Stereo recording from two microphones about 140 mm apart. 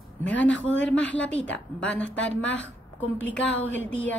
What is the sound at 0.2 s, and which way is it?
A woman's voice, 10° left (ahead or behind).